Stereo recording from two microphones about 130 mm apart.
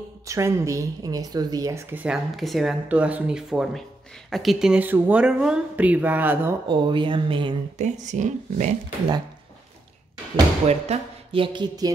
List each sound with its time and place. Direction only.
0.3 s speech: 25° right (ahead or behind)
2.0 s speech: centre (ahead or behind)
6.7 s speech: 40° right (ahead or behind)
7.7 s speech: 65° right (ahead or behind)
10.7 s speech: 50° right (ahead or behind); by 11.9 s 30° right (ahead or behind)